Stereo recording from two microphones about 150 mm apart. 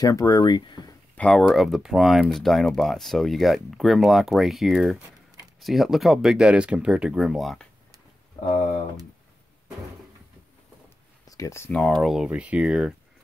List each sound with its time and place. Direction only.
0.0 s speech: 25° left (ahead or behind)
1.1 s speech: 5° left (ahead or behind)
11.2 s speech: 20° left (ahead or behind)
11.8 s speech: centre (ahead or behind)